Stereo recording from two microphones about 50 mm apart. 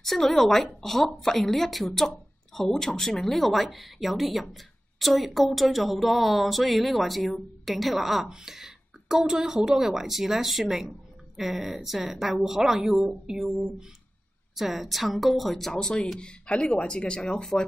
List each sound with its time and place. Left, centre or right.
0.0 s speech: centre
15.7 s speech: centre